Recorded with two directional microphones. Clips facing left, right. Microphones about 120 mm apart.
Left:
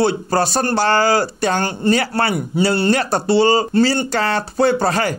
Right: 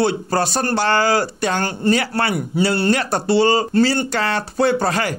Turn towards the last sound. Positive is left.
turn(degrees=35)  # may be behind; listen again after turning